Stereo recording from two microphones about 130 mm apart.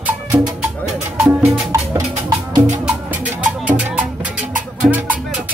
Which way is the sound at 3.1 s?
10° right (ahead or behind).